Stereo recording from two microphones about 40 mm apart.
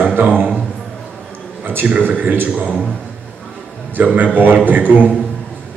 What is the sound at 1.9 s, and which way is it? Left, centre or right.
Speech, right.